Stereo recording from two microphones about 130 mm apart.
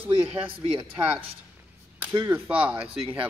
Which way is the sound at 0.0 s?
10° right (ahead or behind).